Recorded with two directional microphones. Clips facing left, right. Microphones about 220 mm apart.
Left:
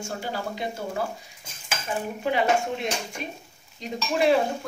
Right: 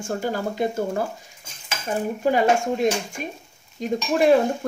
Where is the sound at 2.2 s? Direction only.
45° right (ahead or behind).